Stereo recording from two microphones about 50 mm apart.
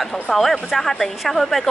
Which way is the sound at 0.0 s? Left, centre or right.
Centre.